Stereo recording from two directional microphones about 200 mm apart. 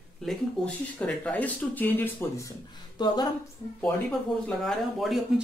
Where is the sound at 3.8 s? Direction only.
5° left (ahead or behind).